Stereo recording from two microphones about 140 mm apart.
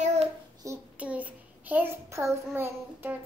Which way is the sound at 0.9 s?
10° right (ahead or behind).